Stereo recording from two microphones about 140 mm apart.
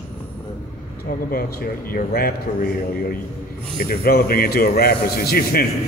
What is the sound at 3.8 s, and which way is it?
Speech, 90° left.